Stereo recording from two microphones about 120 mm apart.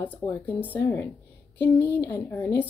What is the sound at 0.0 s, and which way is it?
Speech, 15° left (ahead or behind).